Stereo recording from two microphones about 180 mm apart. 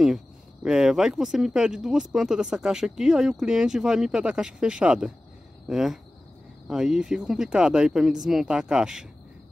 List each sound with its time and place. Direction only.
0.7 s speech: 5° right (ahead or behind)